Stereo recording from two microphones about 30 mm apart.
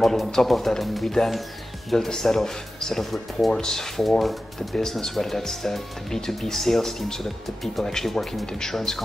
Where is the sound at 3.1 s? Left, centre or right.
Centre.